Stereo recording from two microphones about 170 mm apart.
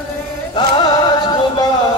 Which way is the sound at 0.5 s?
25° left (ahead or behind).